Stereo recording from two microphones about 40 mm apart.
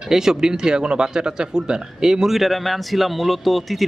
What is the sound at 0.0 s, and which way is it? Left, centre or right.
Speech, centre.